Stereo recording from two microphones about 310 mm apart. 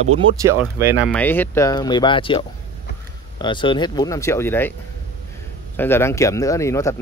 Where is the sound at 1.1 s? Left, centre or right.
Centre.